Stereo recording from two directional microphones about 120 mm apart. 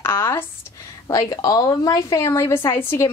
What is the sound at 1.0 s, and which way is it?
A woman's voice, 30° left (ahead or behind).